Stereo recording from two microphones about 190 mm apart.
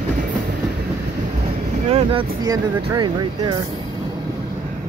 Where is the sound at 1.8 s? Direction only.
30° right (ahead or behind).